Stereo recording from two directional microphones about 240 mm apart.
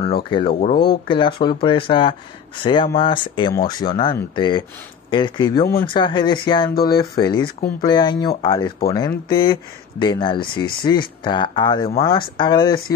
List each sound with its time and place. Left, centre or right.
0.0 s speech: left